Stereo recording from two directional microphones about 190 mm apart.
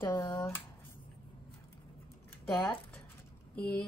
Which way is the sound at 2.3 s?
10° left (ahead or behind).